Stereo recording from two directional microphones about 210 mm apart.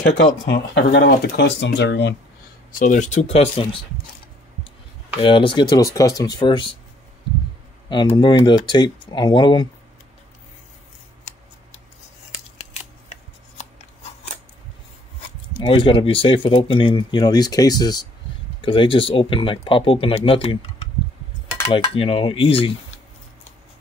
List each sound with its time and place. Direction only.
0.2 s speech: 55° left (ahead or behind)
2.8 s speech: 40° left (ahead or behind)
5.2 s speech: 25° left (ahead or behind)
7.9 s speech: 20° left (ahead or behind)
15.6 s speech: 25° left (ahead or behind)